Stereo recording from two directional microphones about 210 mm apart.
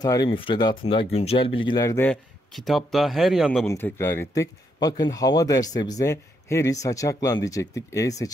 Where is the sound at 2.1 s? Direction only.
Centre (ahead or behind).